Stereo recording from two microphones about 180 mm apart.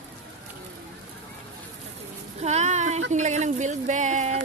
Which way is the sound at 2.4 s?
40° right (ahead or behind).